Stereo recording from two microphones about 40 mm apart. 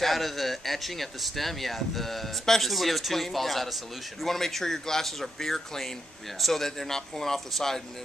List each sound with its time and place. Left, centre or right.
0.0 s speech: centre